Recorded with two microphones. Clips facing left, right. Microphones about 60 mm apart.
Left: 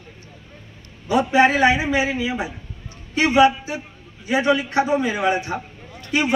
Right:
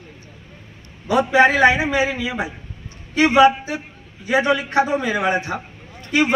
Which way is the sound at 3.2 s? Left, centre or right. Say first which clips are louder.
Right 2 dB; right.